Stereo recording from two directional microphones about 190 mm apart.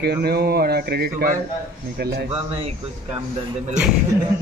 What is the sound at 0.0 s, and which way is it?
Speech, 55° right (ahead or behind).